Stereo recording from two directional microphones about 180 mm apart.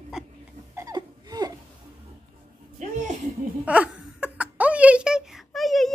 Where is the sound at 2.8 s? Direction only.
45° right (ahead or behind).